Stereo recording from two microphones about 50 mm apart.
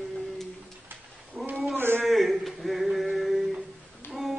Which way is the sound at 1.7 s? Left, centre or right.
Right.